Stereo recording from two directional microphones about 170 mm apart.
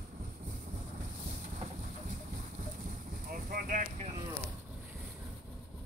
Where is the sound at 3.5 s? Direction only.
55° right (ahead or behind).